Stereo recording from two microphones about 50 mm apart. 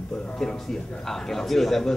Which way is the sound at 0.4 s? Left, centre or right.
Centre.